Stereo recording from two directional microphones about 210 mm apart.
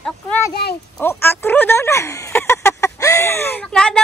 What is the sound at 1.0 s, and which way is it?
Speech, 10° left (ahead or behind).